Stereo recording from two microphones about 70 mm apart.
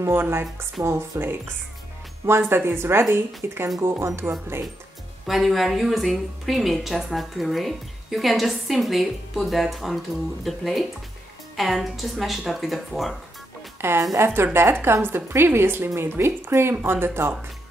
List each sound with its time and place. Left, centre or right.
0.0 s a woman's voice: right
5.2 s a woman's voice: centre
13.7 s a woman's voice: right